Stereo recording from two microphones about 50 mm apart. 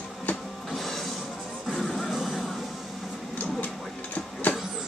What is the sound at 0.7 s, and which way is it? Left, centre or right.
Music, centre.